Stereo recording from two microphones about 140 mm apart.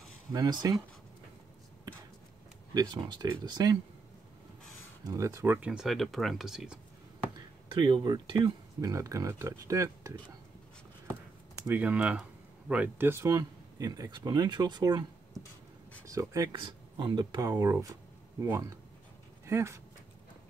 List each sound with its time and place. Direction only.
0.3 s speech: 30° right (ahead or behind)
2.7 s speech: 30° right (ahead or behind)
5.0 s speech: 25° right (ahead or behind); by 6.8 s 5° right (ahead or behind)
7.3 s speech: 35° right (ahead or behind)
8.8 s speech: 25° right (ahead or behind)
11.6 s speech: 15° right (ahead or behind); by 15.0 s 30° right (ahead or behind)
16.1 s speech: 25° right (ahead or behind)
16.5 s speech: 35° right (ahead or behind)
19.4 s speech: 20° right (ahead or behind)